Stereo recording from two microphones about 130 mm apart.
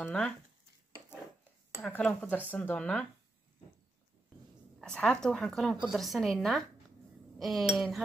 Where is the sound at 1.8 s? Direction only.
10° left (ahead or behind).